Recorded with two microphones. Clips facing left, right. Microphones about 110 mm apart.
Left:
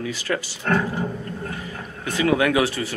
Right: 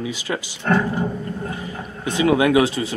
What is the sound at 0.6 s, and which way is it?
Speech, 5° right (ahead or behind).